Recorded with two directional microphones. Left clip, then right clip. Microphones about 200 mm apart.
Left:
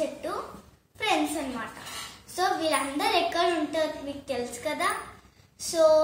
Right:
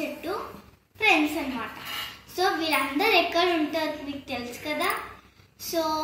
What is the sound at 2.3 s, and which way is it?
A child's voice, 15° left (ahead or behind).